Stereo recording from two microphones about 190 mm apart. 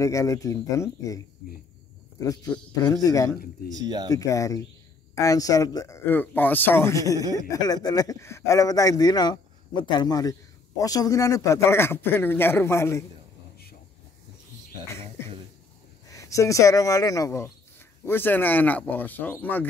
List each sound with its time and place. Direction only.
0.0 s a man's voice: 15° left (ahead or behind)
2.7 s speech: 20° left (ahead or behind)
3.7 s speech: 20° right (ahead or behind)
4.1 s a man's voice: 15° left (ahead or behind)
15.0 s a sound: 15° left (ahead or behind)
16.1 s a man's voice: 15° left (ahead or behind)